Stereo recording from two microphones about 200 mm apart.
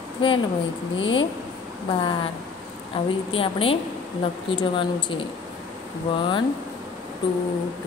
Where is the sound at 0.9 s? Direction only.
75° left (ahead or behind).